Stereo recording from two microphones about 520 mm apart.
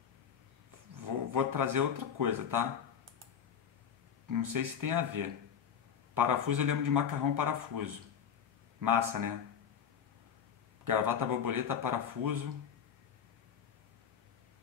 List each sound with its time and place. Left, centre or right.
0.9 s speech: right
4.3 s a man's voice: right
10.8 s a man's voice: right